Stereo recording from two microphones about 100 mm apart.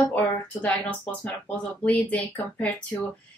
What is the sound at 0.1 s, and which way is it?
Speech, 20° left (ahead or behind).